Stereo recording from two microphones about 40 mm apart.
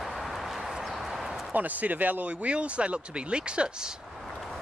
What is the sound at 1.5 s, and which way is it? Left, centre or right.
Speech, right.